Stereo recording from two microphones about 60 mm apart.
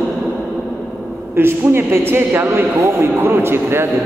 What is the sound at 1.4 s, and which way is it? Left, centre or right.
A man's voice, right.